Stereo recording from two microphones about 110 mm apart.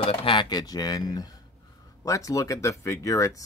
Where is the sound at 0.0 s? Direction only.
55° left (ahead or behind).